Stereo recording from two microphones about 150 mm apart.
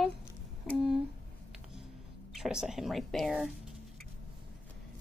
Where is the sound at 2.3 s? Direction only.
5° right (ahead or behind).